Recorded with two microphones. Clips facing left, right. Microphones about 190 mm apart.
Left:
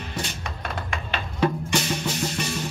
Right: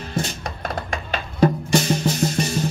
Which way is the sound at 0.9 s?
40° right (ahead or behind).